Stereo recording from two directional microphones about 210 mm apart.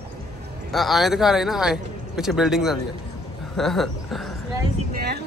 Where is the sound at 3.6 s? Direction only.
Centre (ahead or behind).